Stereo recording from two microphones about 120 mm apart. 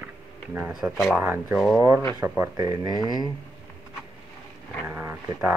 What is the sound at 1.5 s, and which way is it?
Speech, 5° right (ahead or behind).